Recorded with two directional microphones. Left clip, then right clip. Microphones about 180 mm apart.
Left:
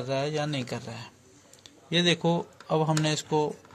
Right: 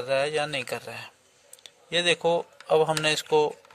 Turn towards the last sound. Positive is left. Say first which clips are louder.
# right 4 dB
turn(degrees=-65)  # may be behind; listen again after turning